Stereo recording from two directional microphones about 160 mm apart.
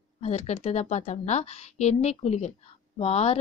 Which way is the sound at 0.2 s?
40° left (ahead or behind).